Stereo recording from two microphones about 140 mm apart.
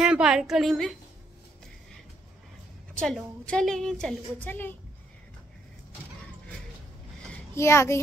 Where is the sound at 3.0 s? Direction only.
5° left (ahead or behind).